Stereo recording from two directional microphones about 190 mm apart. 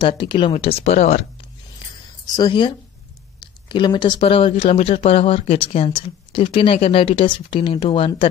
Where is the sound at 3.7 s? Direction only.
25° left (ahead or behind).